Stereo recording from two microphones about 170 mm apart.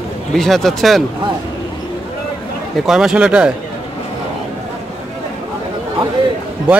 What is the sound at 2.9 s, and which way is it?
Speech, 5° right (ahead or behind).